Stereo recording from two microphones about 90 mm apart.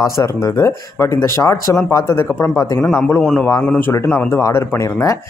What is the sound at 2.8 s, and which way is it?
Speech, 5° left (ahead or behind).